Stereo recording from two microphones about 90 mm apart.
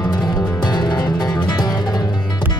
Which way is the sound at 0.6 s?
55° left (ahead or behind).